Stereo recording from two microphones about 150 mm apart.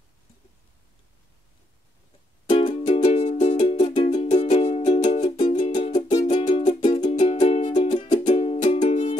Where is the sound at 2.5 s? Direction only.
40° left (ahead or behind).